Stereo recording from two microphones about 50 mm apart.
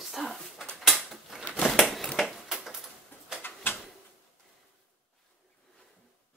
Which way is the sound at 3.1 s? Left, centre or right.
Left.